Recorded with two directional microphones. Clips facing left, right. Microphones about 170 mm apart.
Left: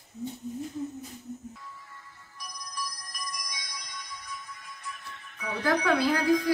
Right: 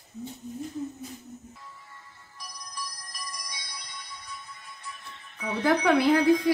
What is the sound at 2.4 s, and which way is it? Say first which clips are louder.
Music: left 2 dB; 25° right (ahead or behind).